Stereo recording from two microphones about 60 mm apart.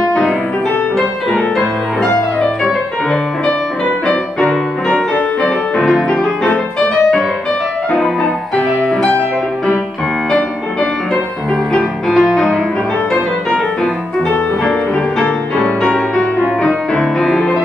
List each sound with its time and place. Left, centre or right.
2.0 s music: centre
11.7 s music: centre
15.9 s music: centre